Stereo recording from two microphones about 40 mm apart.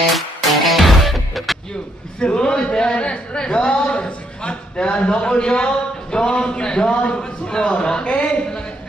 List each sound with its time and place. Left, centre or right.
0.1 s music: centre
2.1 s a sound: left
7.7 s a man's voice: left